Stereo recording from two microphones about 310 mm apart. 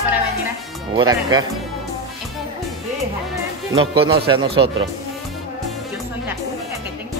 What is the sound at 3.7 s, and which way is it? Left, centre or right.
Speech, centre.